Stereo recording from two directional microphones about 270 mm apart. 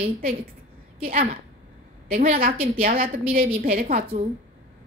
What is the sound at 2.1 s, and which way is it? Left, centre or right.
A woman's voice, right.